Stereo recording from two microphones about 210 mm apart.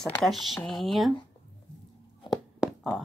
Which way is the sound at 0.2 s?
Centre (ahead or behind).